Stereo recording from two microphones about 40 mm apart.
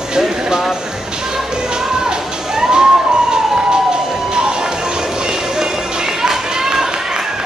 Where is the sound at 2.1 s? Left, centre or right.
Centre.